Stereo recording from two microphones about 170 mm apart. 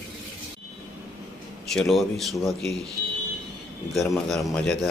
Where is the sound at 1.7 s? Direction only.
Centre (ahead or behind).